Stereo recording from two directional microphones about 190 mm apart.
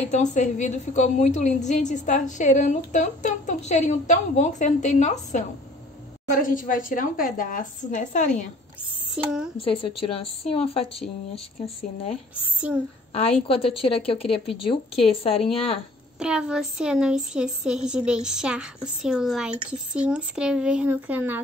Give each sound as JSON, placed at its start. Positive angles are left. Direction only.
{"t": 0.1, "sound": "a woman's voice", "side_deg": 40}
{"t": 9.1, "sound": "a woman's voice", "side_deg": -5}
{"t": 9.6, "sound": "a woman's voice", "side_deg": 30}
{"t": 12.5, "sound": "speech", "side_deg": -5}
{"t": 13.1, "sound": "a woman's voice", "side_deg": 30}
{"t": 16.2, "sound": "a woman's voice", "side_deg": -5}